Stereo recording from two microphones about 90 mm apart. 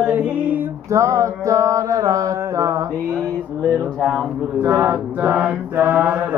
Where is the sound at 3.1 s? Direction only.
15° left (ahead or behind).